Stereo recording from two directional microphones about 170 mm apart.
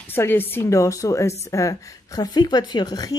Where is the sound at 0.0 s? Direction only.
15° left (ahead or behind).